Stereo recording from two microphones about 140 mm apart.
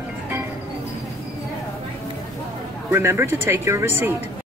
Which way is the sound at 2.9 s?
20° right (ahead or behind).